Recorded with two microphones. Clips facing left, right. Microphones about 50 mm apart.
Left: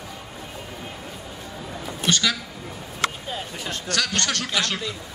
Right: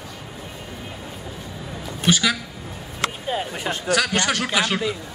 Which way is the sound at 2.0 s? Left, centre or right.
Centre.